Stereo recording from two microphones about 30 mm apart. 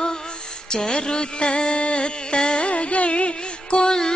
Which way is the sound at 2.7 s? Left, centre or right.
Left.